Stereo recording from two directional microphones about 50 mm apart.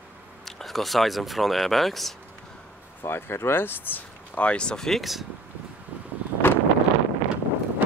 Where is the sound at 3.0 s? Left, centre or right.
Left.